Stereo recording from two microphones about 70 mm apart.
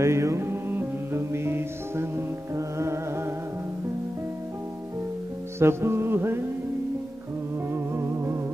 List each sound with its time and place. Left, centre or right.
0.0 s music: right
5.6 s music: right
7.7 s music: right